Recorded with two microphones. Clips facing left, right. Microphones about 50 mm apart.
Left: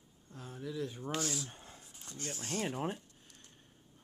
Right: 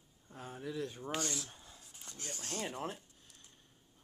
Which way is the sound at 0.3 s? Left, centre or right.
Centre.